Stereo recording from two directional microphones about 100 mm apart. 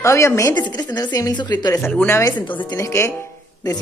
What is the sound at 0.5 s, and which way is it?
A woman's voice, 45° left (ahead or behind).